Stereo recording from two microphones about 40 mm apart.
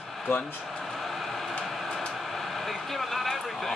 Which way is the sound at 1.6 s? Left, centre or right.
Centre.